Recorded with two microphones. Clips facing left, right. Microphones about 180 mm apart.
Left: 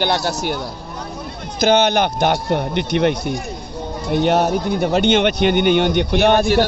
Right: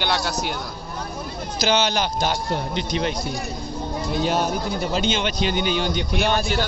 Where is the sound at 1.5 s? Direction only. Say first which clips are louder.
Left 7 dB; 55° left (ahead or behind).